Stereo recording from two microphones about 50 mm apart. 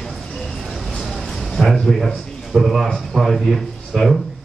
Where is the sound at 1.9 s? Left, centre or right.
Centre.